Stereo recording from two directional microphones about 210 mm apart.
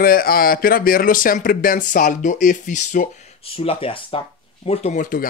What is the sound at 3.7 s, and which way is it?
Speech, 25° left (ahead or behind).